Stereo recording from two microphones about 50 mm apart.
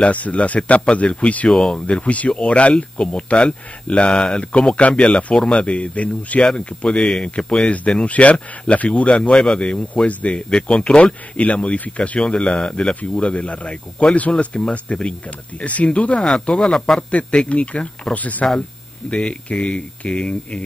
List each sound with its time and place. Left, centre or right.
0.0 s speech: left
1.5 s speech: centre
16.5 s a man's voice: centre
17.1 s speech: left